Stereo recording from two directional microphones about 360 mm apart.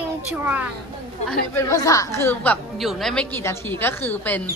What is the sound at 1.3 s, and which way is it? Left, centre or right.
A woman's voice, centre.